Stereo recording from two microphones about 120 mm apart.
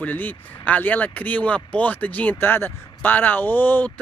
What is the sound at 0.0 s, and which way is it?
Speech, 15° left (ahead or behind).